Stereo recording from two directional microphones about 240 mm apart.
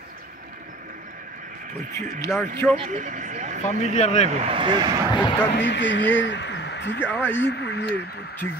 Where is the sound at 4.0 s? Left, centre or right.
Left.